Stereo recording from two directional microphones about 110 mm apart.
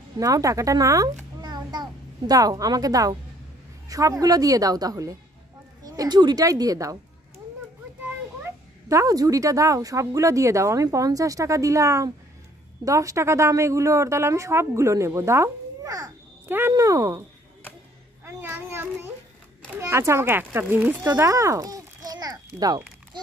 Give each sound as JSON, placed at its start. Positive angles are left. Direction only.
{"t": 0.2, "sound": "a child's voice", "side_deg": -30}
{"t": 8.8, "sound": "speech", "side_deg": -30}
{"t": 16.4, "sound": "speech", "side_deg": -20}
{"t": 16.7, "sound": "a woman's voice", "side_deg": -30}
{"t": 18.2, "sound": "a sound", "side_deg": -20}
{"t": 19.8, "sound": "speech", "side_deg": -25}
{"t": 21.2, "sound": "a sound", "side_deg": -30}